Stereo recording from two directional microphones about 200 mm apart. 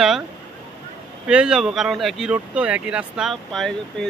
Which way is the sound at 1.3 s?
5° right (ahead or behind).